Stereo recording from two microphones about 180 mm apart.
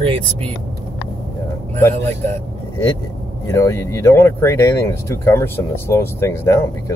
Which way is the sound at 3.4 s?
15° left (ahead or behind).